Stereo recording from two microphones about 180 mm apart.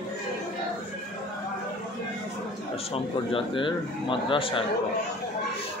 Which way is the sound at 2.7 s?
30° left (ahead or behind).